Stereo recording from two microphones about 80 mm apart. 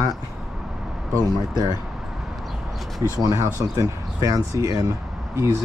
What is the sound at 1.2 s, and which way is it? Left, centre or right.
Speech, right.